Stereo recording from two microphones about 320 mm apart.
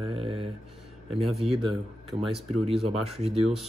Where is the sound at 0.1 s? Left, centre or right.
Centre.